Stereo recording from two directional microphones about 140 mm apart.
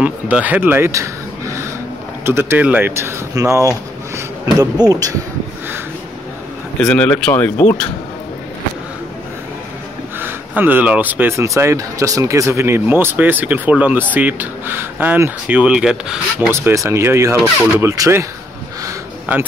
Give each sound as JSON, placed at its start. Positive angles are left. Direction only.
{"t": 0.0, "sound": "speech", "side_deg": -10}
{"t": 6.8, "sound": "speech", "side_deg": 5}
{"t": 10.1, "sound": "speech", "side_deg": -15}
{"t": 16.4, "sound": "speech", "side_deg": -20}